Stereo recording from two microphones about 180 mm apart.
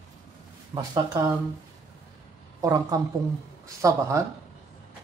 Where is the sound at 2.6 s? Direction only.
20° right (ahead or behind).